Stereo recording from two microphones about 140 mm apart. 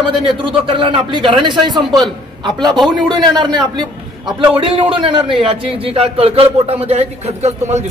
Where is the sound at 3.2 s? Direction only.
30° right (ahead or behind); by 7.8 s 50° right (ahead or behind).